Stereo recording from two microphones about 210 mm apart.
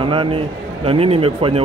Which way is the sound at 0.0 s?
25° right (ahead or behind).